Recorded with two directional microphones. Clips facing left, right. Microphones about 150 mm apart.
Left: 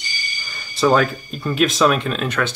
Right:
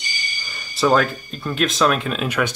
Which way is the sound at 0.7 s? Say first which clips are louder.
Left 1 dB; centre (ahead or behind).